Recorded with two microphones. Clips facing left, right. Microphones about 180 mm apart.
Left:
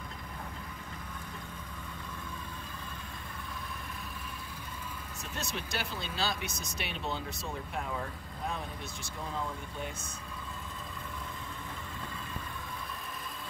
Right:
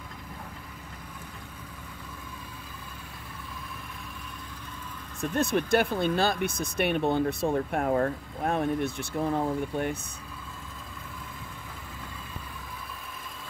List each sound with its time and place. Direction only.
5.2 s speech: 55° right (ahead or behind)